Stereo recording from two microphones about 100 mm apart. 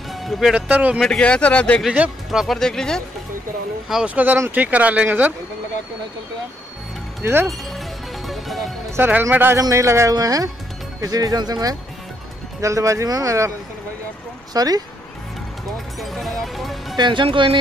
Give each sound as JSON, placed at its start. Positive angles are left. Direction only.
{"t": 0.2, "sound": "speech", "side_deg": 0}
{"t": 0.6, "sound": "speech", "side_deg": -15}
{"t": 1.0, "sound": "speech", "side_deg": 10}
{"t": 1.8, "sound": "speech", "side_deg": -5}
{"t": 3.9, "sound": "speech", "side_deg": -10}
{"t": 7.2, "sound": "a man's voice", "side_deg": -25}
{"t": 8.3, "sound": "music", "side_deg": 0}
{"t": 8.9, "sound": "a man's voice", "side_deg": -25}
{"t": 14.5, "sound": "speech", "side_deg": -40}
{"t": 16.0, "sound": "speech", "side_deg": 0}
{"t": 16.9, "sound": "speech", "side_deg": -50}